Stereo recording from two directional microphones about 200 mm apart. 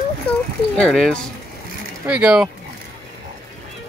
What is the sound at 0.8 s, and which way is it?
Speech, centre (ahead or behind).